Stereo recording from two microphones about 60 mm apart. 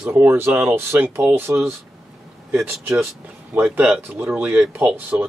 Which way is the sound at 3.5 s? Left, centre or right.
Right.